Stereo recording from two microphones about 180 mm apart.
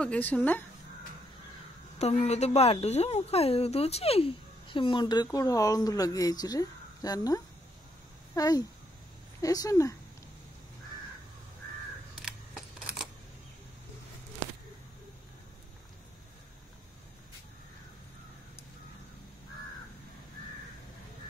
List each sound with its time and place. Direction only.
0.0 s speech: 10° left (ahead or behind)
2.0 s speech: 35° left (ahead or behind); by 9.9 s 20° left (ahead or behind)
12.2 s camera: centre (ahead or behind)